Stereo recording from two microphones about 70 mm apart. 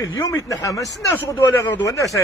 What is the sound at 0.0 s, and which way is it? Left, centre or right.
Speech, left.